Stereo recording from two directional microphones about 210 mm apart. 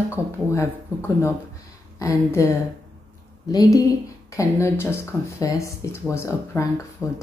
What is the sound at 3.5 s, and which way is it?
A woman's voice, 20° left (ahead or behind).